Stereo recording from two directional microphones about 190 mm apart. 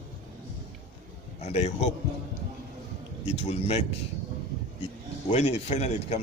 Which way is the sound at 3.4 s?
35° left (ahead or behind).